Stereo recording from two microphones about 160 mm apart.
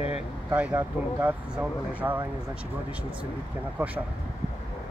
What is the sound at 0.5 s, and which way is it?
Speech, 10° right (ahead or behind).